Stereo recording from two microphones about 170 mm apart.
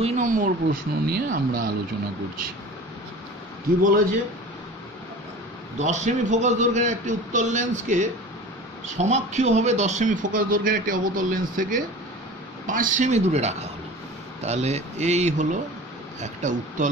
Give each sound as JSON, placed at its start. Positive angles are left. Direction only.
{"t": 0.0, "sound": "speech", "side_deg": -45}
{"t": 5.8, "sound": "speech", "side_deg": -45}